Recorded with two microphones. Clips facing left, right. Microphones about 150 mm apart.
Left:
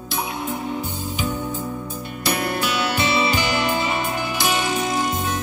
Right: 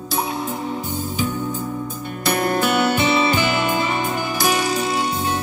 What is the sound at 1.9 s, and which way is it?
Music, 50° right (ahead or behind).